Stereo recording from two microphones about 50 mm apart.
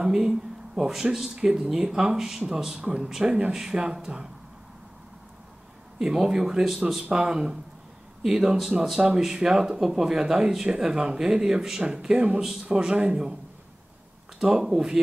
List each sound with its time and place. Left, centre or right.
0.0 s speech: centre
5.9 s speech: centre
14.4 s speech: centre